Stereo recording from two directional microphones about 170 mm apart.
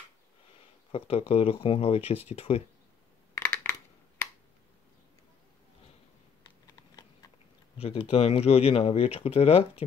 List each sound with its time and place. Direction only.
0.9 s speech: 35° left (ahead or behind)
3.3 s a sound: 15° left (ahead or behind)
7.7 s speech: 35° left (ahead or behind)